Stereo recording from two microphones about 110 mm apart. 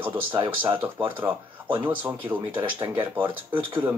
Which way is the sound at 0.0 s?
20° right (ahead or behind).